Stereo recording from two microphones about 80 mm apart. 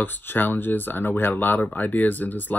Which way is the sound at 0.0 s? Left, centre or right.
Left.